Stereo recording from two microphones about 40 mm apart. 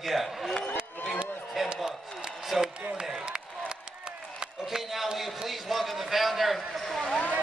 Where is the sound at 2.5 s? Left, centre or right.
Centre.